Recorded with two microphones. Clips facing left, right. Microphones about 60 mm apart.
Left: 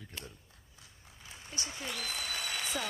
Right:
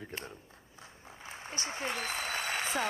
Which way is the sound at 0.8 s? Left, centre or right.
Right.